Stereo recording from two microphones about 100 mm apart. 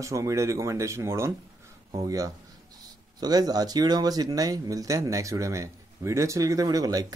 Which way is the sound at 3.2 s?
40° right (ahead or behind).